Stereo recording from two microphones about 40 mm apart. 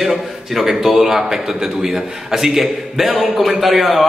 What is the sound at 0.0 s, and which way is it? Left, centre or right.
A man's voice, centre.